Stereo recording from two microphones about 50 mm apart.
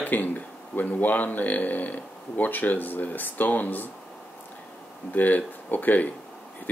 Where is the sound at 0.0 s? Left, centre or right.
Left.